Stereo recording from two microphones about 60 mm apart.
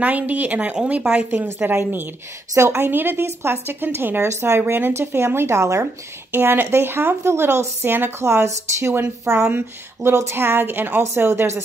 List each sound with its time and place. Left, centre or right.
0.0 s speech: right
1.3 s a woman's voice: right
2.5 s a woman's voice: right
2.8 s a woman's voice: right
5.6 s a woman's voice: right
6.3 s a woman's voice: right
8.2 s speech: right
9.5 s a woman's voice: right
11.0 s speech: right